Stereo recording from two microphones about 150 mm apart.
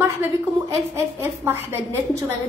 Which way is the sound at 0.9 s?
15° right (ahead or behind).